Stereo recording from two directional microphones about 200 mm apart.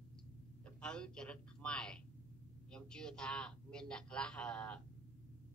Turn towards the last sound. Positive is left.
turn(degrees=5)  # may be behind; listen again after turning